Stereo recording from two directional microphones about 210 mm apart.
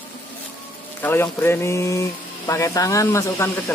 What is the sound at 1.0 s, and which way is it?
Speech, 10° left (ahead or behind).